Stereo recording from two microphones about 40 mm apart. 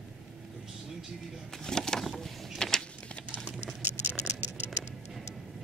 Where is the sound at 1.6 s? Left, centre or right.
Centre.